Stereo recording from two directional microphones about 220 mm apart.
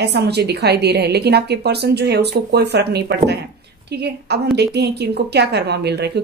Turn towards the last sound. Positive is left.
turn(degrees=-50)  # may be behind; listen again after turning